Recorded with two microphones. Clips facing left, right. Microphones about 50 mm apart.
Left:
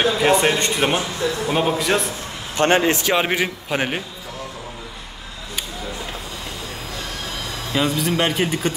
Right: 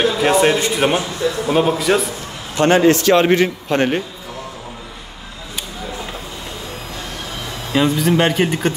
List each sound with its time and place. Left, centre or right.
0.0 s a man's voice: centre
2.5 s a man's voice: left
2.9 s a man's voice: centre
7.7 s a man's voice: centre